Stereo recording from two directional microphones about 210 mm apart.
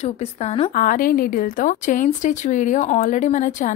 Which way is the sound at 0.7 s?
40° left (ahead or behind).